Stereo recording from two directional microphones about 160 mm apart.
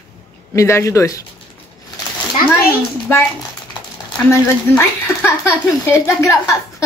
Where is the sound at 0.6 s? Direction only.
20° left (ahead or behind).